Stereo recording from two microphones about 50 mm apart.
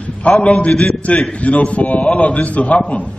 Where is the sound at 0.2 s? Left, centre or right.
Left.